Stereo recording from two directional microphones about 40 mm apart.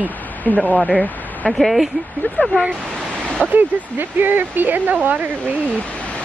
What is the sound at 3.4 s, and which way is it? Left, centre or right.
Speech, right.